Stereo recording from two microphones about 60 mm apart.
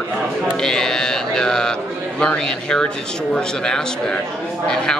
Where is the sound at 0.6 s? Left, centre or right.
Centre.